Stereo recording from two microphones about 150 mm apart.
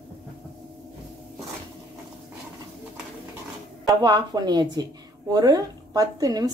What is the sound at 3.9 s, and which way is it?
A woman's voice, 25° right (ahead or behind).